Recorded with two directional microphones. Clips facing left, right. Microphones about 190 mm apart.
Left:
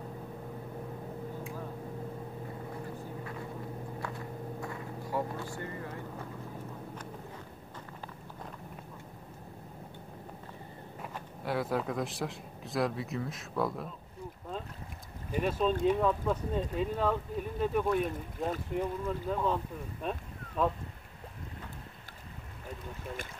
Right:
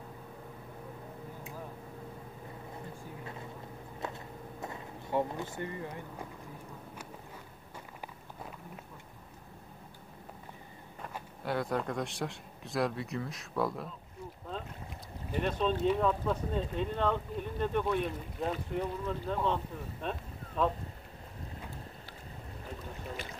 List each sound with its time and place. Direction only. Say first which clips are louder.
4.0 s vehicle: left 2 dB; 20° right (ahead or behind)
11.4 s speech: left 1 dB; centre (ahead or behind)
15.3 s speech: left 2 dB; 5° left (ahead or behind)